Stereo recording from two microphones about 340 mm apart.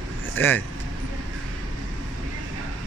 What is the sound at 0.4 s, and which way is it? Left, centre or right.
Speech, centre.